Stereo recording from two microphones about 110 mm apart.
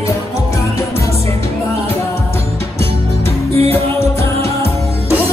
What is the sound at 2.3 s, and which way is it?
Music, 65° right (ahead or behind).